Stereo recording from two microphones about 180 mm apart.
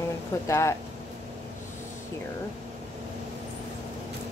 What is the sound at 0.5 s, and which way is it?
Speech, 15° left (ahead or behind).